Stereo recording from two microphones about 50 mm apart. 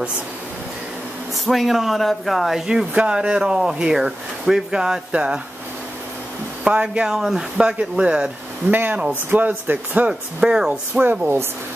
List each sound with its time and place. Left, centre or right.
1.3 s speech: centre
5.1 s speech: right
6.6 s speech: right
7.1 s speech: centre
8.6 s speech: right
10.0 s speech: centre
10.7 s speech: right